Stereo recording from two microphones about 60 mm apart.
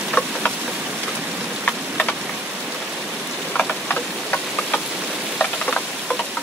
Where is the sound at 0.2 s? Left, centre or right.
Left.